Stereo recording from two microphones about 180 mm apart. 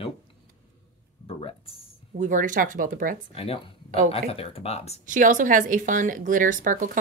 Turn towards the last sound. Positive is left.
turn(degrees=-45)  # may be behind; listen again after turning